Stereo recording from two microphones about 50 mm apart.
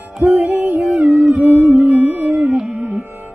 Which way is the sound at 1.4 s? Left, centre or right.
Centre.